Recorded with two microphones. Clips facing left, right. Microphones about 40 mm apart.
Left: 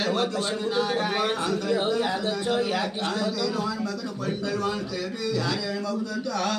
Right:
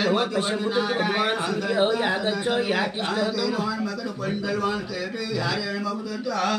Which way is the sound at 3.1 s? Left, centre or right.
Centre.